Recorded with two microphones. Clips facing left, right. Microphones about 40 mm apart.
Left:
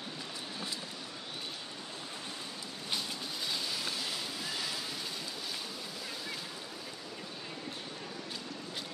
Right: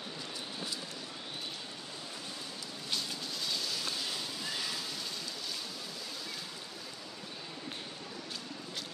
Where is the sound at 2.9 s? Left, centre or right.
Centre.